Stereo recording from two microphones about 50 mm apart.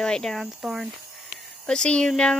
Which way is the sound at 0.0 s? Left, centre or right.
Centre.